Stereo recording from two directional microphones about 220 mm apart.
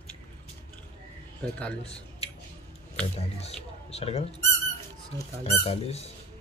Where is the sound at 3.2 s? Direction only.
30° left (ahead or behind).